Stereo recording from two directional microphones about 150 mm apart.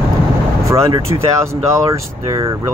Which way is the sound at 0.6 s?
20° right (ahead or behind).